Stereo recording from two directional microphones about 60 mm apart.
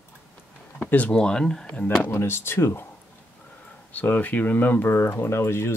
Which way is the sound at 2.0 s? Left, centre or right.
Left.